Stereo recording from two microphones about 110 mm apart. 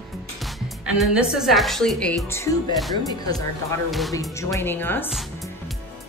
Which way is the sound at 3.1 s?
35° left (ahead or behind).